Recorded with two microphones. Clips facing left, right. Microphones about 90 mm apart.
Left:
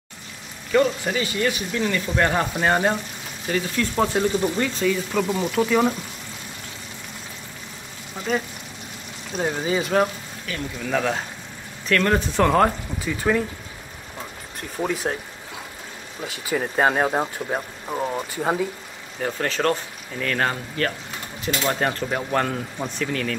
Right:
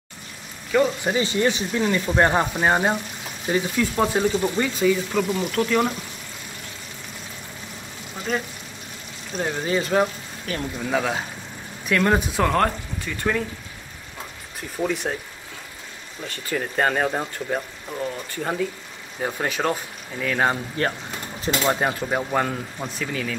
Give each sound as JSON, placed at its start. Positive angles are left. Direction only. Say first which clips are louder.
{"t": 1.0, "sound": "speech", "louder": "right 2 dB", "side_deg": -25}
{"t": 2.6, "sound": "speech", "louder": "even", "side_deg": -10}
{"t": 3.8, "sound": "speech", "louder": "left 1 dB", "side_deg": -5}
{"t": 8.3, "sound": "speech", "louder": "left 2 dB", "side_deg": 0}
{"t": 10.5, "sound": "speech", "louder": "right 3 dB", "side_deg": -40}
{"t": 10.8, "sound": "speech", "louder": "left 1 dB", "side_deg": -5}
{"t": 14.9, "sound": "speech", "louder": "left 2 dB", "side_deg": 0}
{"t": 16.3, "sound": "speech", "louder": "left 2 dB", "side_deg": 10}
{"t": 17.8, "sound": "speech", "louder": "left 3 dB", "side_deg": 30}
{"t": 18.3, "sound": "speech", "louder": "left 1 dB", "side_deg": 10}
{"t": 19.2, "sound": "speech", "louder": "left 1 dB", "side_deg": -10}
{"t": 20.8, "sound": "speech", "louder": "left 1 dB", "side_deg": -25}
{"t": 21.6, "sound": "speech", "louder": "even", "side_deg": -10}